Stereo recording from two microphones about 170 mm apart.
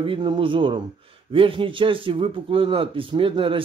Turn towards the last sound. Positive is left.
turn(degrees=-30)  # may be behind; listen again after turning